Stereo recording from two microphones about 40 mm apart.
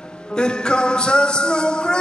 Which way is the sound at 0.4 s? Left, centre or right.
Left.